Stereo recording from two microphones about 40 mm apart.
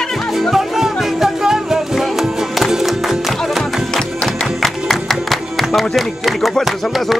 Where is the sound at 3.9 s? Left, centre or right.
Centre.